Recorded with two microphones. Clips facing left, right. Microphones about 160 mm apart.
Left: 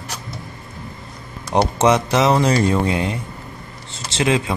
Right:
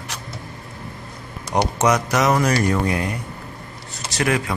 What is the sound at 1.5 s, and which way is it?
Speech, 25° left (ahead or behind).